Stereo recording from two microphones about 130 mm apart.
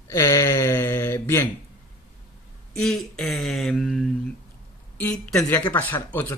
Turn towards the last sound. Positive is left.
turn(degrees=15)  # may be behind; listen again after turning